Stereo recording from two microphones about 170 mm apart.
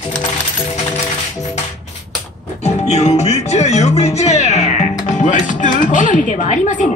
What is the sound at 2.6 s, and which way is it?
Music, 40° left (ahead or behind).